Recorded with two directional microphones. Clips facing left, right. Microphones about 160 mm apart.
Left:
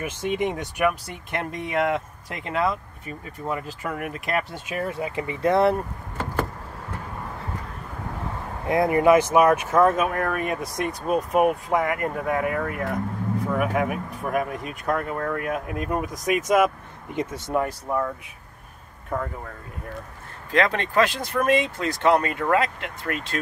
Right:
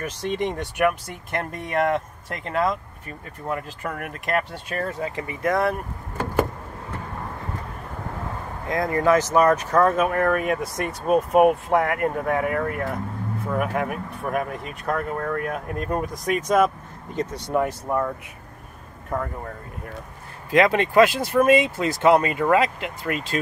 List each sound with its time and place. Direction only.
0.0 s speech: 10° left (ahead or behind)
4.8 s speech: 15° left (ahead or behind)
8.6 s speech: 15° left (ahead or behind)
17.6 s speech: 5° right (ahead or behind)
20.5 s speech: 10° right (ahead or behind)